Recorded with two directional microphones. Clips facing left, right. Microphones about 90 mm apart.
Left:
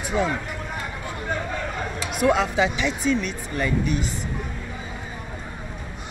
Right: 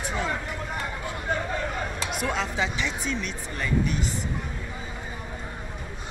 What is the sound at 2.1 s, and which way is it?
Speech, 5° left (ahead or behind).